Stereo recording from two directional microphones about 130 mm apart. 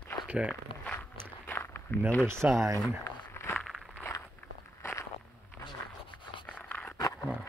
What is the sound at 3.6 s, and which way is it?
Walk, centre (ahead or behind).